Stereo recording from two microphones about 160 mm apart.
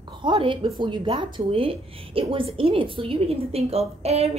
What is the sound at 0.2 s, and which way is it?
A woman's voice, 30° right (ahead or behind).